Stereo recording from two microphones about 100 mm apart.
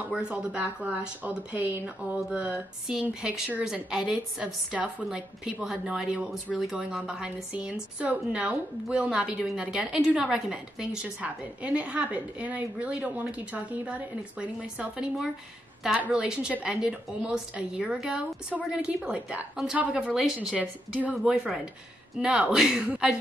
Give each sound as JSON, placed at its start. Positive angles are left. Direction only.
{"t": 0.1, "sound": "a woman's voice", "side_deg": -10}